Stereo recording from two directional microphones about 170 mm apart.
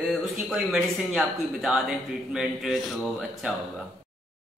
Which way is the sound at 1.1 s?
Centre (ahead or behind).